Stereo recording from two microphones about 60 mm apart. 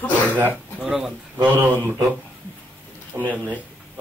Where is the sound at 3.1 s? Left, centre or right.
Right.